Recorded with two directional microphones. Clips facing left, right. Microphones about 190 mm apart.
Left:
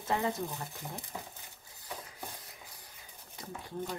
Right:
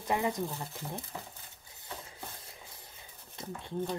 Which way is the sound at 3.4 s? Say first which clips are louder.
Right 3 dB; 25° right (ahead or behind).